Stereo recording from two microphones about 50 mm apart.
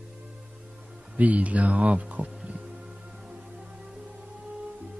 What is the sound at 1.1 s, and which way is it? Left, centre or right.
Speech, right.